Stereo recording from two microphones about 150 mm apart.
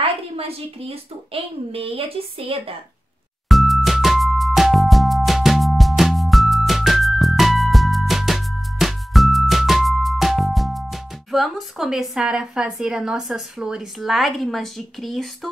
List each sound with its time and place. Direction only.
0.0 s speech: 40° right (ahead or behind)
3.4 s music: centre (ahead or behind)